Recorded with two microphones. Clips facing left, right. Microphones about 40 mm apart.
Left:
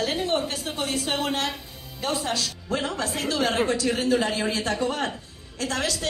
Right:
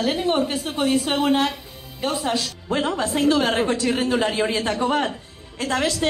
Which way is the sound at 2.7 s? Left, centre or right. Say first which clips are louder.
Right 6 dB; right.